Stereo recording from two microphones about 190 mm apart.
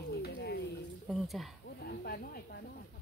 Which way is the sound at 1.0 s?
Centre (ahead or behind).